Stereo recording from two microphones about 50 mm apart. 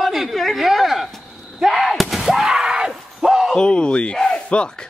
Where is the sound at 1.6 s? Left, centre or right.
Centre.